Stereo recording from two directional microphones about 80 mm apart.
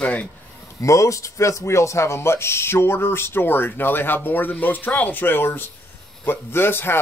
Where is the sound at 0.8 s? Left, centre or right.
Left.